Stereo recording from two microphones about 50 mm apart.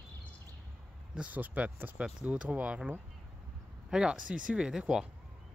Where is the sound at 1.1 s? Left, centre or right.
Right.